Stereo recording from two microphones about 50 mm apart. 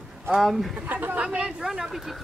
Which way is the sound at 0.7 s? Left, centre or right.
Right.